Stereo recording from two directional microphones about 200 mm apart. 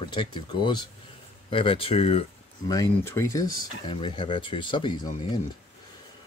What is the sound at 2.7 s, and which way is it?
Speech, 15° left (ahead or behind).